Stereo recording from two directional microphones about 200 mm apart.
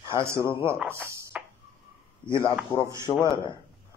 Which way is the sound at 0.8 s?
15° right (ahead or behind).